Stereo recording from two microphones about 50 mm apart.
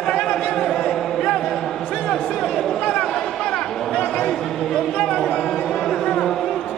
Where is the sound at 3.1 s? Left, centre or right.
Centre.